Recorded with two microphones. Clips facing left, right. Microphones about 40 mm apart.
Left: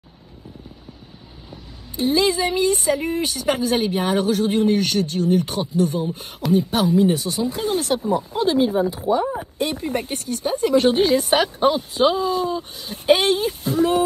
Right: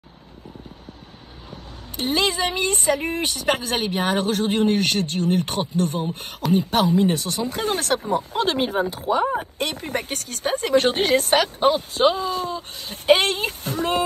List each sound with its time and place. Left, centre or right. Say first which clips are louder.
1.9 s a woman's voice: left 3 dB; right
11.3 s a woman's voice: even; right